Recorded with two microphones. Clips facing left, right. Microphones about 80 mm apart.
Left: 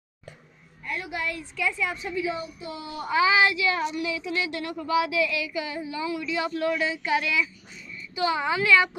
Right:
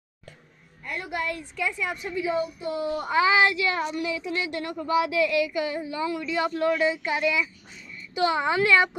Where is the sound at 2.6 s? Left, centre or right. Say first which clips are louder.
Right 6 dB; right.